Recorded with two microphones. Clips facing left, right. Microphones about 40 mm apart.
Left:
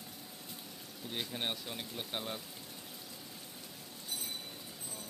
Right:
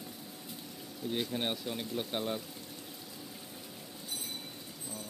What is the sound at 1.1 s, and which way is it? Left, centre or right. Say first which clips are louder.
Speech: right 5 dB; centre.